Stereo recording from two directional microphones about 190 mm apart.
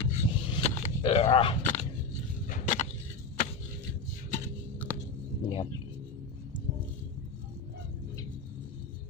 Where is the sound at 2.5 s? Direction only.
40° left (ahead or behind).